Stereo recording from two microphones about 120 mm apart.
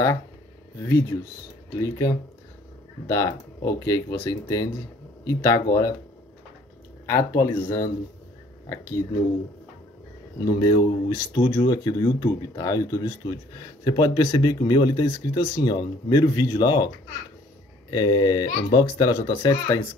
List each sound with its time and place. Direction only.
1.8 s speech: 30° left (ahead or behind)
7.1 s speech: 25° left (ahead or behind)
10.4 s speech: 35° left (ahead or behind)
11.1 s speech: 25° left (ahead or behind)
11.4 s speech: 35° left (ahead or behind)